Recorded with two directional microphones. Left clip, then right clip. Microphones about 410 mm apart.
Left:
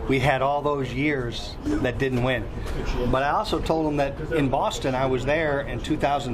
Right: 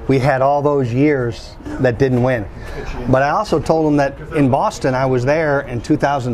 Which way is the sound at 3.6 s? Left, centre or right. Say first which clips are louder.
Right 9 dB; right.